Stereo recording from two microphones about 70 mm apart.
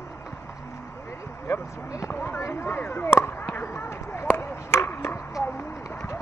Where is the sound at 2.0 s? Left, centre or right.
Left.